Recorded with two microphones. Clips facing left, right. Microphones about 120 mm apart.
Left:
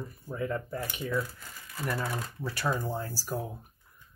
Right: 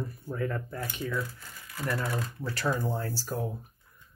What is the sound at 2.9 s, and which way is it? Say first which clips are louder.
Speech: right 2 dB; 15° left (ahead or behind).